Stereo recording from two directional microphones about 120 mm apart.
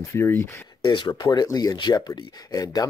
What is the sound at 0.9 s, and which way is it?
Speech, 40° left (ahead or behind).